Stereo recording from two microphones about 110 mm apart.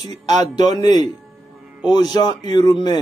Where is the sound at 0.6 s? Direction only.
35° left (ahead or behind).